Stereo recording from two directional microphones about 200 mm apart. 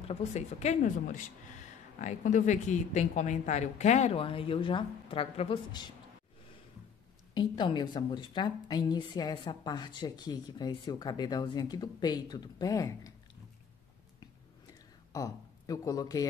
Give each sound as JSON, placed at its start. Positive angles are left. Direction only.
{"t": 0.1, "sound": "a woman's voice", "side_deg": 35}
{"t": 7.3, "sound": "a woman's voice", "side_deg": 20}
{"t": 14.7, "sound": "a sound", "side_deg": 15}